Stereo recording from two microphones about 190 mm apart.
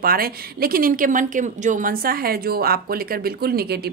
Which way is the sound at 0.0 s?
50° right (ahead or behind).